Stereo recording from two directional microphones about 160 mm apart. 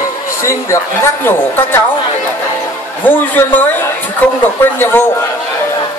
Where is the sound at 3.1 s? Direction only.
10° left (ahead or behind).